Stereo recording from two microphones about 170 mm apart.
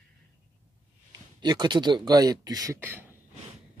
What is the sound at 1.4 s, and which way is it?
Speech, 25° right (ahead or behind).